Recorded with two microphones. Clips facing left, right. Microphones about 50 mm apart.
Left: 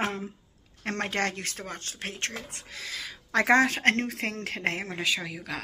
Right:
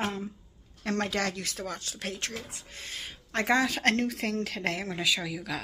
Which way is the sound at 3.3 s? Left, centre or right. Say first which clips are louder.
Left 4 dB; left.